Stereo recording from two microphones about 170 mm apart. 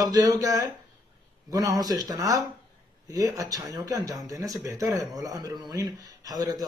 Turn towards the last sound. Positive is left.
turn(degrees=-20)  # may be behind; listen again after turning